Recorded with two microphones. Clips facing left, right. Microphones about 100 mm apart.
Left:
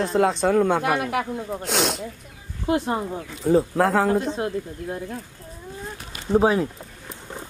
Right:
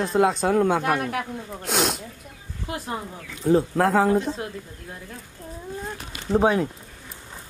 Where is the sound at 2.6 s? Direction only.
30° left (ahead or behind).